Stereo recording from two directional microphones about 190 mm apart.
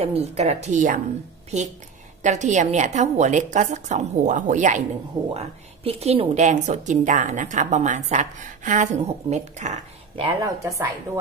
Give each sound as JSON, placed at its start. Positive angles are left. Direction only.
{"t": 0.0, "sound": "a woman's voice", "side_deg": -35}
{"t": 2.2, "sound": "a woman's voice", "side_deg": -40}
{"t": 10.2, "sound": "a woman's voice", "side_deg": -15}